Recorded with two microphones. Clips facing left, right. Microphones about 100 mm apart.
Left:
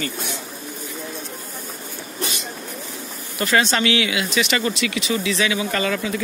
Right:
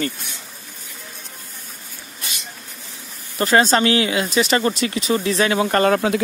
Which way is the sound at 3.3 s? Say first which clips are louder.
Right 4 dB; 35° right (ahead or behind).